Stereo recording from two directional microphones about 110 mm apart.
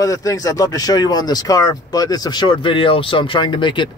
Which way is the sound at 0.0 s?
30° left (ahead or behind).